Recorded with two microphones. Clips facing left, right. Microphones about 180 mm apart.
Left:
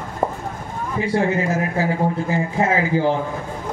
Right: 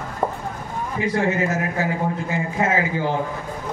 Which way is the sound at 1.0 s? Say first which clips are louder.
Left 1 dB; 30° left (ahead or behind).